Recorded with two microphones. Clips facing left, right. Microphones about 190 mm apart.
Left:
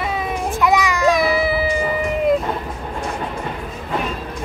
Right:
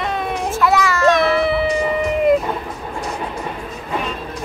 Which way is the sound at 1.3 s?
5° left (ahead or behind).